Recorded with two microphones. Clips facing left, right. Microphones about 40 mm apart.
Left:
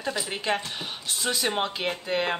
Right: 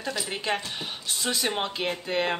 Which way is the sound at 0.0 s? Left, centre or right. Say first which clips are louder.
Left 1 dB; centre.